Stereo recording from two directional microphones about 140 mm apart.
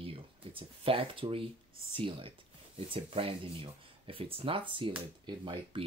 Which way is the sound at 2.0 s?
40° right (ahead or behind).